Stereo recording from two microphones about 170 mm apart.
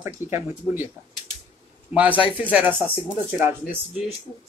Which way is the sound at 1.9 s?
10° right (ahead or behind).